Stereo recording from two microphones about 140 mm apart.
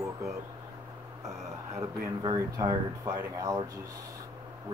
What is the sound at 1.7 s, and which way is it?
Speech, 25° right (ahead or behind).